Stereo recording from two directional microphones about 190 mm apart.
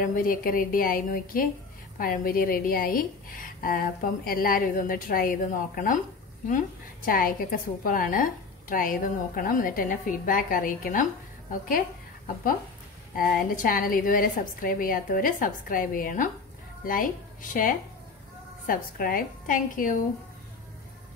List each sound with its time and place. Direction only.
0.0 s a woman's voice: 45° left (ahead or behind)
13.1 s a woman's voice: 50° left (ahead or behind)